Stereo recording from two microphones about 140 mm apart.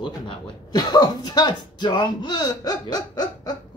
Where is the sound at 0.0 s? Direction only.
30° left (ahead or behind).